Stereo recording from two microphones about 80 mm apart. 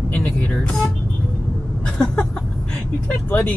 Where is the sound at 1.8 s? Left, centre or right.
Centre.